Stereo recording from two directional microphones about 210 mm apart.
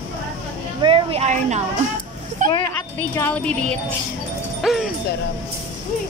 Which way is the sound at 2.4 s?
40° right (ahead or behind).